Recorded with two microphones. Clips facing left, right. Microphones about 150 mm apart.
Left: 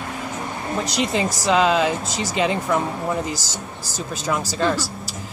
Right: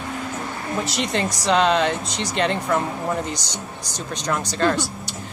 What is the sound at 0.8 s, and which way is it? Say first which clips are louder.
Speech: left 3 dB; centre (ahead or behind).